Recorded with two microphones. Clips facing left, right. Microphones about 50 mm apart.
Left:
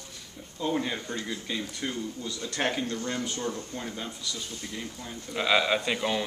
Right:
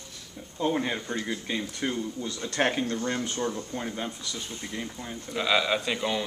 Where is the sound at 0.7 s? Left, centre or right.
Centre.